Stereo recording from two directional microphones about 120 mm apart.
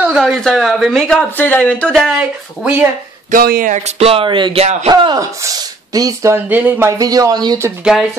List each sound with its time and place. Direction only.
0.2 s speech: 5° left (ahead or behind)
2.1 s speech: 15° right (ahead or behind)
3.3 s speech: 90° right; by 6.3 s 30° right (ahead or behind)
6.3 s speech: 15° right (ahead or behind)
7.0 s speech: 30° right (ahead or behind)
7.8 s speech: 5° right (ahead or behind)